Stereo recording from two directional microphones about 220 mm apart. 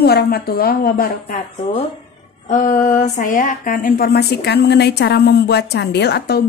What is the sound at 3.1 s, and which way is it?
A woman's voice, 35° left (ahead or behind).